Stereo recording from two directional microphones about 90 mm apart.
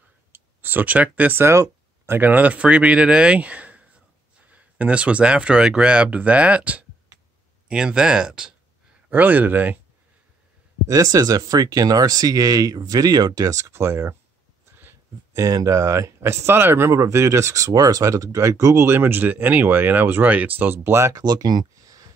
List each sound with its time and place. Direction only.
0.3 s speech: 20° right (ahead or behind)
9.1 s speech: 20° right (ahead or behind)
10.9 s speech: 40° right (ahead or behind)
15.3 s speech: 40° right (ahead or behind)
21.2 s speech: 50° right (ahead or behind)